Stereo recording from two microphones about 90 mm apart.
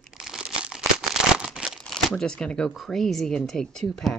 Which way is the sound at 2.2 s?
10° left (ahead or behind).